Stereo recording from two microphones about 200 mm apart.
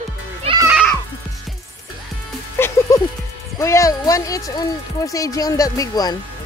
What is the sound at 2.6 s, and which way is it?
Music, 10° left (ahead or behind).